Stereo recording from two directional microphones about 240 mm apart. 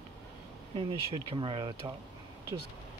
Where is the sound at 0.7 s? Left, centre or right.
Right.